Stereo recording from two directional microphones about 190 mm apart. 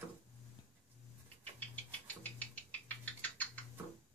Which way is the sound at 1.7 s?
10° left (ahead or behind).